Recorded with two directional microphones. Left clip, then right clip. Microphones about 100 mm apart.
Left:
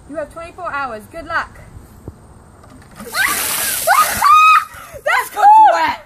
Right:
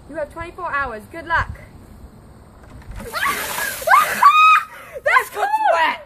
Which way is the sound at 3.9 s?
20° right (ahead or behind).